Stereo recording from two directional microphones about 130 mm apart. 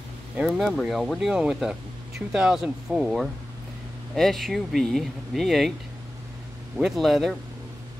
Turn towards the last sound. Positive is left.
turn(degrees=0)  # may be behind; listen again after turning